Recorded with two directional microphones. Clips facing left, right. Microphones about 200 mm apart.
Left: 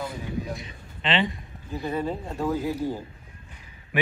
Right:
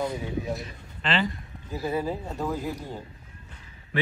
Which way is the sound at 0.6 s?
Centre (ahead or behind).